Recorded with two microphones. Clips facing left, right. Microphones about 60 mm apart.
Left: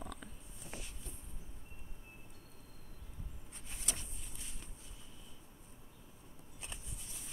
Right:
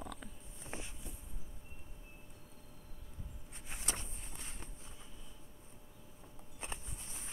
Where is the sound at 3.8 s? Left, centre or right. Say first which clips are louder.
Right 3 dB; right.